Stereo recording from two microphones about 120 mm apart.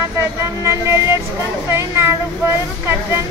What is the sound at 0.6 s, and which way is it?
Speech, 25° right (ahead or behind).